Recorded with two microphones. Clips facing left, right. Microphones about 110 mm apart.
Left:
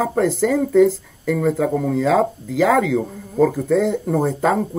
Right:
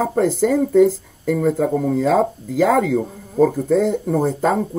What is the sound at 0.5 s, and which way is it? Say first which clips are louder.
Speech: even; 55° left (ahead or behind).